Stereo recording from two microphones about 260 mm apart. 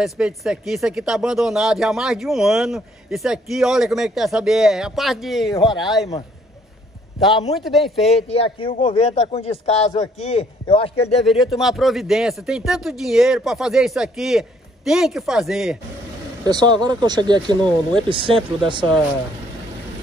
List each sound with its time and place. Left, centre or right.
0.0 s speech: centre
7.5 s speech: centre
8.1 s a man's voice: left
11.2 s speech: centre
16.4 s speech: centre